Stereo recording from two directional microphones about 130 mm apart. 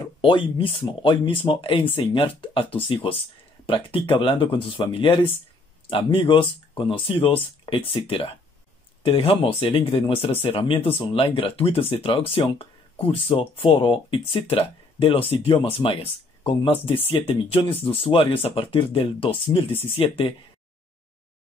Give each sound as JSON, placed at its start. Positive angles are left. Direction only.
{"t": 0.0, "sound": "speech", "side_deg": 40}